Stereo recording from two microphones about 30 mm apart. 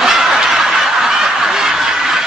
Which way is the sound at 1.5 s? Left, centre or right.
Centre.